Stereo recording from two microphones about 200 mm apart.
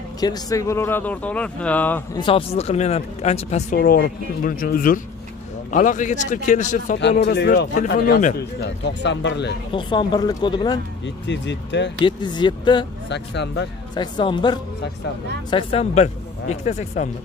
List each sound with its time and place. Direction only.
0.2 s speech: 20° left (ahead or behind)
2.1 s speech: 25° left (ahead or behind)
7.0 s a man's voice: 60° left (ahead or behind); by 8.4 s 40° left (ahead or behind)
8.6 s speech: 65° left (ahead or behind)
9.8 s speech: 25° left (ahead or behind)
11.2 s speech: 60° left (ahead or behind)
12.0 s speech: 20° left (ahead or behind)
13.1 s speech: 60° left (ahead or behind)
13.9 s speech: 25° left (ahead or behind)